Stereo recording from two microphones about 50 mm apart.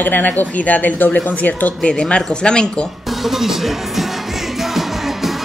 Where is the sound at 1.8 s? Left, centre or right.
Centre.